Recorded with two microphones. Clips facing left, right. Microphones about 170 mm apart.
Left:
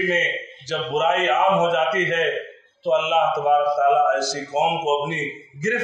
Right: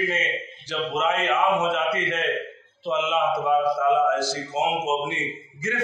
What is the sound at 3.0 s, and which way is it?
Speech, 70° left (ahead or behind).